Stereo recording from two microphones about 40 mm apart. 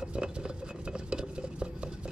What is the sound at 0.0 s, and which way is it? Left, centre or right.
Cutlery, right.